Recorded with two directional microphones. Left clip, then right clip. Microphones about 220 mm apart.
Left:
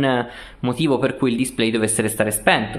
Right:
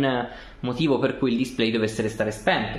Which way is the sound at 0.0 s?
20° left (ahead or behind).